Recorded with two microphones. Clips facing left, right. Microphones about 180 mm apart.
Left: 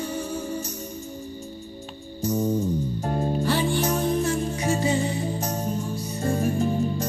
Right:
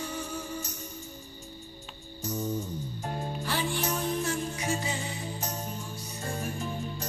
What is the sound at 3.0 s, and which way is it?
Music, 40° left (ahead or behind).